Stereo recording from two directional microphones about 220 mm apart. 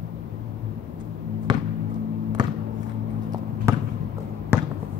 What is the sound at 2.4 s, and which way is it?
Music, 20° right (ahead or behind).